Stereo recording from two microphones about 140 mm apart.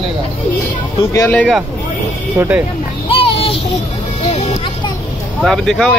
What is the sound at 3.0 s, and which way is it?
Child singing, 40° left (ahead or behind).